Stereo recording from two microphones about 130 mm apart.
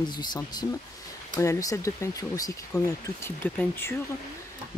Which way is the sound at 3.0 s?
15° left (ahead or behind).